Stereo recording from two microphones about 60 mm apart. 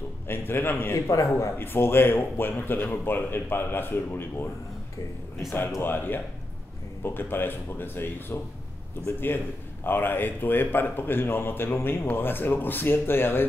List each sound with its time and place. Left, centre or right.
0.3 s a man's voice: left
0.9 s speech: left
1.6 s a man's voice: left
5.8 s a man's voice: left